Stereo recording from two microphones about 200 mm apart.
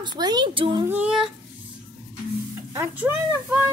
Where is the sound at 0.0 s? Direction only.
20° right (ahead or behind).